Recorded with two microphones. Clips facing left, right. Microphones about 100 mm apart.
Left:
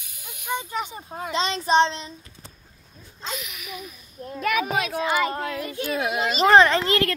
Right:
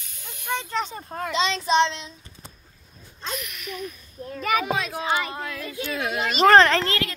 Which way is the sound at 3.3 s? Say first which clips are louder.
Right 1 dB; centre (ahead or behind).